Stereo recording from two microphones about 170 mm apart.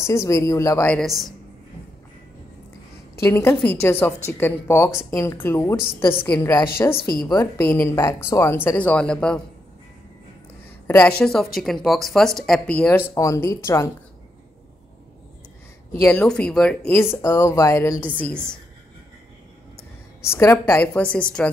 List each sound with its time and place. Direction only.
0.0 s a woman's voice: 15° left (ahead or behind)
0.9 s speech: centre (ahead or behind)
3.2 s a woman's voice: 15° left (ahead or behind)
5.9 s a woman's voice: 30° left (ahead or behind)
6.2 s a woman's voice: 10° left (ahead or behind)
10.9 s speech: 5° left (ahead or behind)
13.1 s a woman's voice: 20° left (ahead or behind)
15.9 s a woman's voice: 10° left (ahead or behind)
20.2 s a woman's voice: 15° left (ahead or behind)